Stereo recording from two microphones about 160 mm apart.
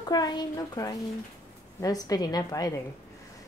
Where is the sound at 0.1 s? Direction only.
25° left (ahead or behind).